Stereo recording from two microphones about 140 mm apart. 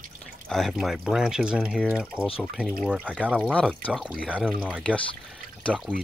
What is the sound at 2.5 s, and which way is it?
Speech, 5° right (ahead or behind).